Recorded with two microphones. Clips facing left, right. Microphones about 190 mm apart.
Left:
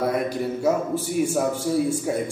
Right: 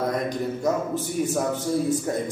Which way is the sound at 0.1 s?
10° left (ahead or behind).